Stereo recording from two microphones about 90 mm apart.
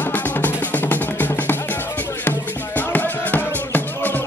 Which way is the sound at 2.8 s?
20° left (ahead or behind).